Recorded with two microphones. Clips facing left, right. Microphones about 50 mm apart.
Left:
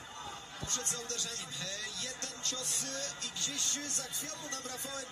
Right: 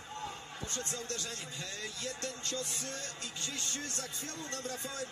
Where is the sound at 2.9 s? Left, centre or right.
Right.